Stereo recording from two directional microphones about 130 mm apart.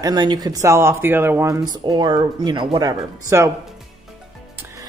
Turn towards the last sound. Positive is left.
turn(degrees=-25)  # may be behind; listen again after turning